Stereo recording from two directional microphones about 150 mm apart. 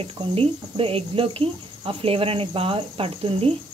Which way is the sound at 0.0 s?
40° right (ahead or behind).